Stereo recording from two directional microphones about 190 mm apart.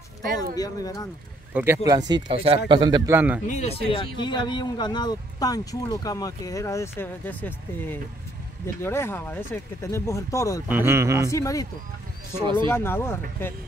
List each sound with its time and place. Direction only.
0.6 s speech: 20° left (ahead or behind)
1.5 s speech: 10° right (ahead or behind)
3.4 s speech: 35° left (ahead or behind); by 10.6 s 15° left (ahead or behind)
10.7 s a man's voice: 15° right (ahead or behind)
11.2 s speech: 15° left (ahead or behind)